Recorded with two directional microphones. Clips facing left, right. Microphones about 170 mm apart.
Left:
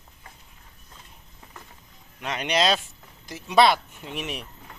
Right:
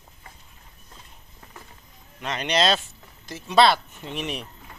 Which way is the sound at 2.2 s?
10° left (ahead or behind).